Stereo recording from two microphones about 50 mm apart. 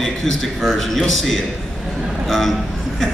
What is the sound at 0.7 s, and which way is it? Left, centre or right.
A man's voice, centre.